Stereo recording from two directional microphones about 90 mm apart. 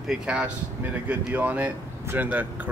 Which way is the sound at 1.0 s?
20° right (ahead or behind).